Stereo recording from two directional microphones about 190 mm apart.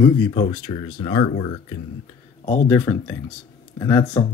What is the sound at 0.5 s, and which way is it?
Speech, 30° left (ahead or behind).